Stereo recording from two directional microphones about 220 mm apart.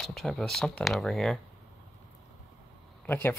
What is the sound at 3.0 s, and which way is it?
Speech, 10° left (ahead or behind).